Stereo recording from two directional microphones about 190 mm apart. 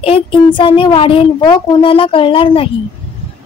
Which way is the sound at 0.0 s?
30° left (ahead or behind).